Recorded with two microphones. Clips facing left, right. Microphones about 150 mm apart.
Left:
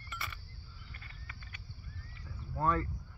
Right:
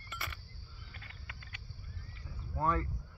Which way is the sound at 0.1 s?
55° right (ahead or behind).